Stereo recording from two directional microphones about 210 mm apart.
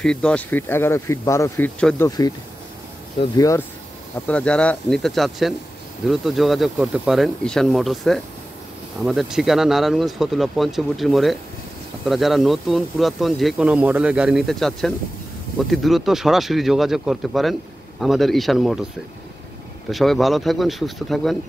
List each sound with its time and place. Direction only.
0.0 s speech: 5° left (ahead or behind)
2.0 s speech: 20° left (ahead or behind)
4.3 s speech: 5° left (ahead or behind)
19.9 s speech: centre (ahead or behind)